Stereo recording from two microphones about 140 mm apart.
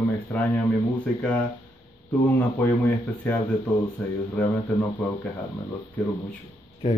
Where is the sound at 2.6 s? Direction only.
15° left (ahead or behind).